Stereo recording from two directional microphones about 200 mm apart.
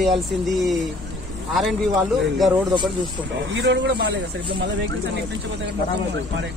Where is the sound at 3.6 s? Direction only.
60° right (ahead or behind).